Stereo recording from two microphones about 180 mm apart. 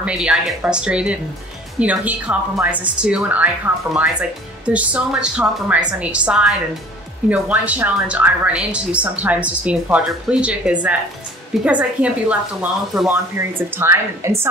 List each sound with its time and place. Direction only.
0.0 s a woman's voice: 5° right (ahead or behind)